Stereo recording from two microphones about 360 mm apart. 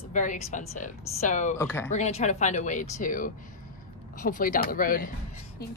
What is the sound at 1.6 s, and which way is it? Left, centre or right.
Speech, centre.